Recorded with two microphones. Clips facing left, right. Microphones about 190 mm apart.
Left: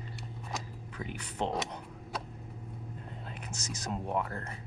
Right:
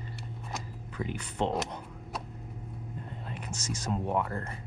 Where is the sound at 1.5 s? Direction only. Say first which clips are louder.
Right 2 dB; centre (ahead or behind).